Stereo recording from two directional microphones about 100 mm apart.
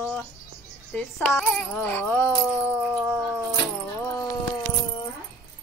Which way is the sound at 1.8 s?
20° left (ahead or behind).